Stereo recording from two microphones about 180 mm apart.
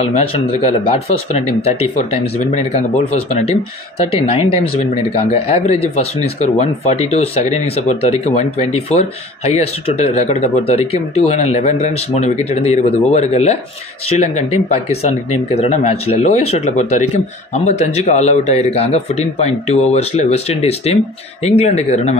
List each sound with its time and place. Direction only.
0.0 s speech: 35° left (ahead or behind)
4.0 s speech: 35° left (ahead or behind)